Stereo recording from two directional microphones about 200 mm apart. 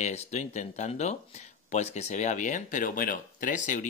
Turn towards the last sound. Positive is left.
turn(degrees=40)  # may be behind; listen again after turning